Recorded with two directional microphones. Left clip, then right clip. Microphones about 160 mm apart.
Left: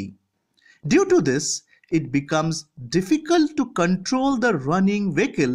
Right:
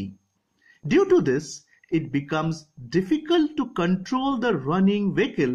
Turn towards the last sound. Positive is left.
turn(degrees=35)  # may be behind; listen again after turning